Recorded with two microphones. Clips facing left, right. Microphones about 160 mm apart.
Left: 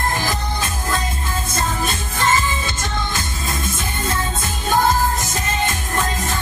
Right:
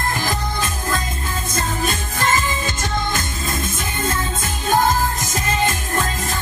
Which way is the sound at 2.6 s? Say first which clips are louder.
Right 2 dB; 50° right (ahead or behind).